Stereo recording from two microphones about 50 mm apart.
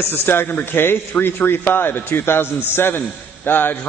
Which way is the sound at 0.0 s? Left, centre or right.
Left.